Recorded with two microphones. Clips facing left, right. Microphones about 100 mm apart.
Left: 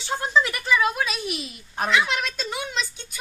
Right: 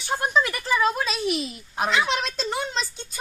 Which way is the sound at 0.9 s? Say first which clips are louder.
Right 2 dB; 40° right (ahead or behind).